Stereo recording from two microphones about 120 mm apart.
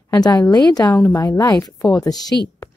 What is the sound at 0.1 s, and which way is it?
A woman's voice, 35° left (ahead or behind).